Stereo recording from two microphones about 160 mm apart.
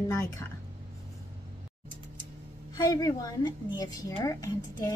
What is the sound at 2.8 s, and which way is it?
A woman's voice, 25° left (ahead or behind).